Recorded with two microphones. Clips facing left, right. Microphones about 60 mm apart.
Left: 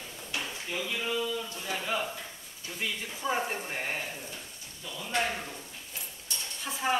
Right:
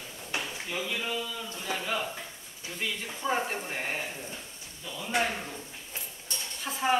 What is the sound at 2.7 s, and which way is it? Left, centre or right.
Speech, centre.